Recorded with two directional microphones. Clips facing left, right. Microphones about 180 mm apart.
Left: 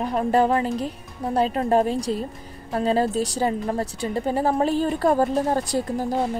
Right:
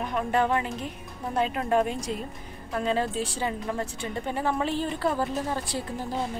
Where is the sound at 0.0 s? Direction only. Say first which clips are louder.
Left 6 dB; 35° left (ahead or behind).